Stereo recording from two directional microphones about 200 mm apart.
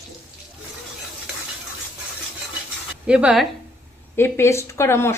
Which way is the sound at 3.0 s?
5° right (ahead or behind).